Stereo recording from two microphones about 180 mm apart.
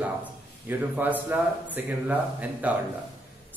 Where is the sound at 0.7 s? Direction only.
10° right (ahead or behind).